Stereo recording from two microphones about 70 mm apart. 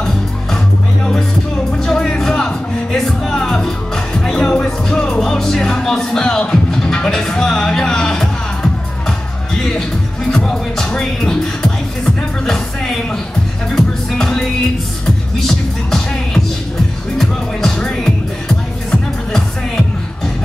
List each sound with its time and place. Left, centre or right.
1.7 s music: centre
10.3 s music: centre
13.7 s music: centre
17.2 s music: centre